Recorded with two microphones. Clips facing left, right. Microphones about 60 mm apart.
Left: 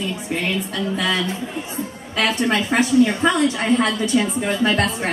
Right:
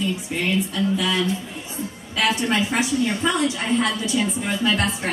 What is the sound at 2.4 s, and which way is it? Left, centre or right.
A woman's voice, left.